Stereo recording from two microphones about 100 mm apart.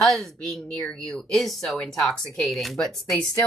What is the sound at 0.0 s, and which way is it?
Speech, 5° left (ahead or behind).